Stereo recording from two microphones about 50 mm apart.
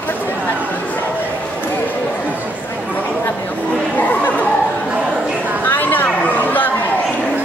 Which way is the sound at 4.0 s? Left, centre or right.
Left.